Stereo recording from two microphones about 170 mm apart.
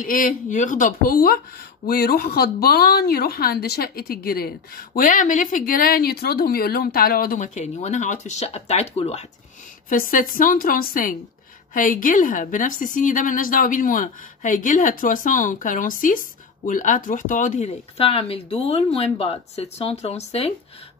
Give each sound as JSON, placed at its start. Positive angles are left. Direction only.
{"t": 0.0, "sound": "a woman's voice", "side_deg": 55}
{"t": 9.8, "sound": "a woman's voice", "side_deg": 55}